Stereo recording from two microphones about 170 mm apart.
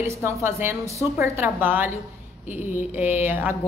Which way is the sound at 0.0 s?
15° right (ahead or behind).